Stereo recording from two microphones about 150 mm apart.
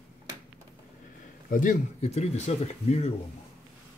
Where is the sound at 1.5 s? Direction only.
60° left (ahead or behind).